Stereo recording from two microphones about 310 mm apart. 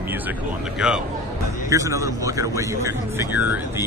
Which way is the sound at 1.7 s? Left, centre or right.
Centre.